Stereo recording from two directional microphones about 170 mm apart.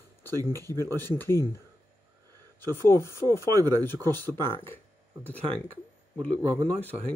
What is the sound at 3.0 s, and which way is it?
Speech, 20° right (ahead or behind).